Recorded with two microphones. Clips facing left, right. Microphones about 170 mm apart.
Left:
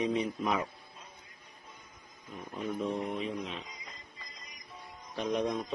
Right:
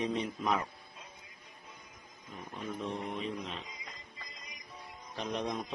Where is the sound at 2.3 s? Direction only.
Centre (ahead or behind).